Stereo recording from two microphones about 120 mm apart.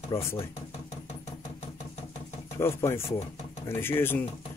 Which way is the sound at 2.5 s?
20° left (ahead or behind).